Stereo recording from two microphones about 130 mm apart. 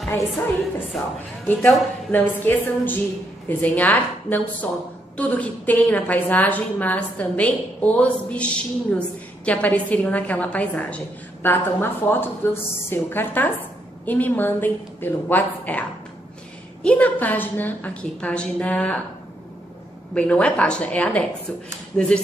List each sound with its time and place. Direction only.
0.9 s a woman's voice: 5° left (ahead or behind)
16.8 s a woman's voice: 10° left (ahead or behind)
20.2 s a woman's voice: 10° left (ahead or behind)